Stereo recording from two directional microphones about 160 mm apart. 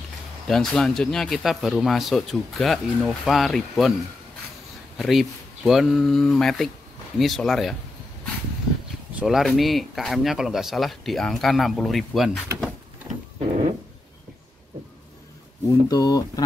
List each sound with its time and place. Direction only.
0.5 s speech: 5° left (ahead or behind)
4.9 s speech: centre (ahead or behind)
9.1 s speech: 5° right (ahead or behind)
15.6 s speech: 25° left (ahead or behind)